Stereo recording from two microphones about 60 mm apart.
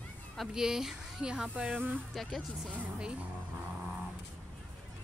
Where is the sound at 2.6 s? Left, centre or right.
Centre.